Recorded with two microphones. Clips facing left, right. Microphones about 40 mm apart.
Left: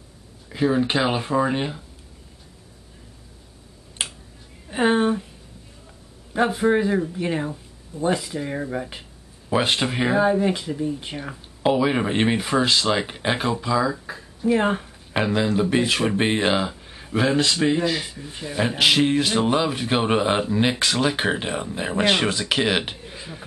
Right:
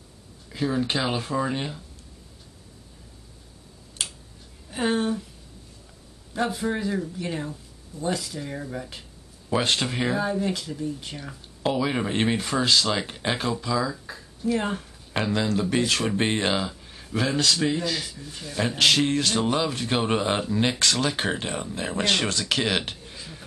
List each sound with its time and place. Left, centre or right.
0.5 s speech: centre
4.0 s finger snapping: left
4.6 s a sound: left
6.3 s speech: left